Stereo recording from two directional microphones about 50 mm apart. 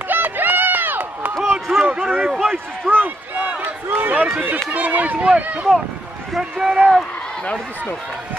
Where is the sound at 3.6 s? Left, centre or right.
Right.